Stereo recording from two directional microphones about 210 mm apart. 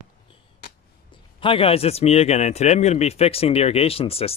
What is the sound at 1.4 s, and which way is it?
Speech, 25° left (ahead or behind).